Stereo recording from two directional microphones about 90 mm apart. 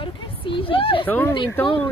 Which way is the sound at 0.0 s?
80° left.